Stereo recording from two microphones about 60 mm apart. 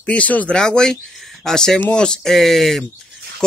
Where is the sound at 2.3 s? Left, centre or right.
Centre.